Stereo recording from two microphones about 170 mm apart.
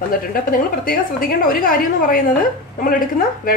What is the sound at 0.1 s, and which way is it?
A woman's voice, 55° left (ahead or behind).